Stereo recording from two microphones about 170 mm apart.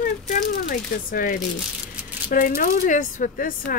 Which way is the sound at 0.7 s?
55° left (ahead or behind).